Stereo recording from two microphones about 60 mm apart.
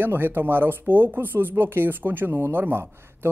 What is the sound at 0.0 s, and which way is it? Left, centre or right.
Speech, right.